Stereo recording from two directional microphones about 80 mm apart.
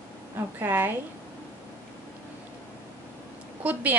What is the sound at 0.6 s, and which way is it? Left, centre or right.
Speech, right.